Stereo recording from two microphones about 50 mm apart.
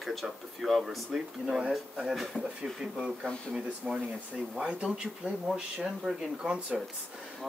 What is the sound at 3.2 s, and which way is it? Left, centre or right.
Speech, centre.